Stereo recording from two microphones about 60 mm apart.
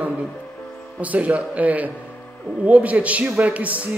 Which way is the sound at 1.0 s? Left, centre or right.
Right.